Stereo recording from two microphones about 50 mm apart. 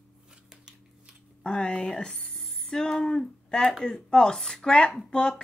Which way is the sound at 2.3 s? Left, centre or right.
Centre.